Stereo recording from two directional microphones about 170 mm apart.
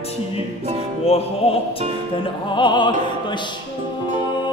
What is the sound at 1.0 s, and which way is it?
Music, 35° left (ahead or behind).